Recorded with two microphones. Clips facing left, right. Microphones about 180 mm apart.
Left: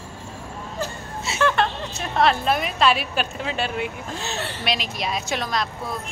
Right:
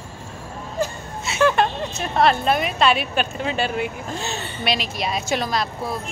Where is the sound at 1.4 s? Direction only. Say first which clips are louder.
Right 3 dB; 15° right (ahead or behind).